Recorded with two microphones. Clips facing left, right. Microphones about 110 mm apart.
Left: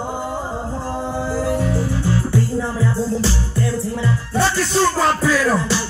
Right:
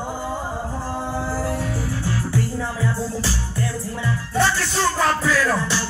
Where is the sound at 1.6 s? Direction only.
20° left (ahead or behind).